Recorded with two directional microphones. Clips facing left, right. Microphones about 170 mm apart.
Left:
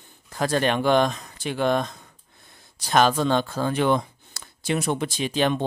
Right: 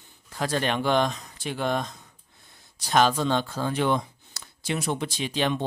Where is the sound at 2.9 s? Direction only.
55° left (ahead or behind).